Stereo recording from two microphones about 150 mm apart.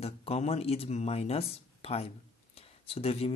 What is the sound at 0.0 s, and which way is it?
Speech, 45° left (ahead or behind).